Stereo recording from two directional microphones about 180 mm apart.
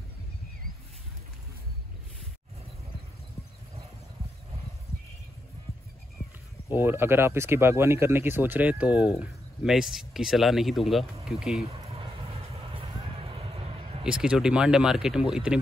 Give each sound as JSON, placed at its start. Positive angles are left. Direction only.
{"t": 6.7, "sound": "speech", "side_deg": -10}
{"t": 11.6, "sound": "a sound", "side_deg": -30}
{"t": 14.0, "sound": "speech", "side_deg": -5}